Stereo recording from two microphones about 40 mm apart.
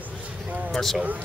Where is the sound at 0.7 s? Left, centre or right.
Centre.